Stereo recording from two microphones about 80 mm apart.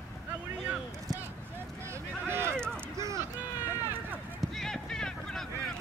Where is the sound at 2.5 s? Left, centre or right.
Centre.